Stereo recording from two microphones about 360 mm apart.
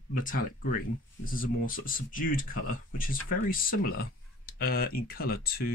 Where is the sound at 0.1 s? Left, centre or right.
Left.